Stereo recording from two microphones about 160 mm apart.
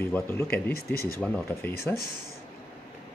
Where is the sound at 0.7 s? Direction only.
70° left (ahead or behind).